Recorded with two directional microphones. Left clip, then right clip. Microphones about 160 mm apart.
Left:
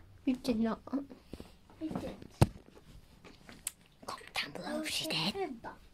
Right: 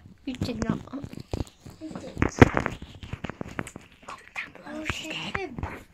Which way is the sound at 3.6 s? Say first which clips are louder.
Right 3 dB; 15° left (ahead or behind).